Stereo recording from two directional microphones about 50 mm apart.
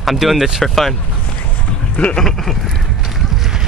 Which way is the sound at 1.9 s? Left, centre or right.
Left.